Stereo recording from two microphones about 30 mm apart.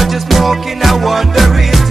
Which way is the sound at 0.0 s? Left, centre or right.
Centre.